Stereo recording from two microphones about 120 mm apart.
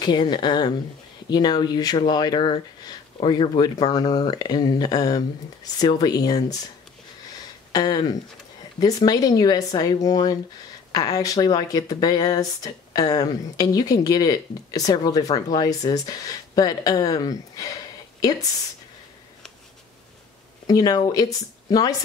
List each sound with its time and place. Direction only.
0.0 s speech: 40° left (ahead or behind)
7.7 s speech: 35° left (ahead or behind)
20.6 s speech: 30° left (ahead or behind)